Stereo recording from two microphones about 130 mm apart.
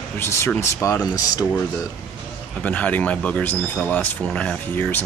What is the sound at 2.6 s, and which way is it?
Speech, 10° left (ahead or behind).